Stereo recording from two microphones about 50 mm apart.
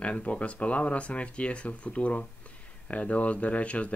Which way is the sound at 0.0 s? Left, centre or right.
Left.